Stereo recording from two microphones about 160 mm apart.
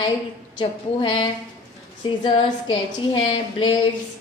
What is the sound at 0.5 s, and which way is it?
A woman's voice, 30° left (ahead or behind).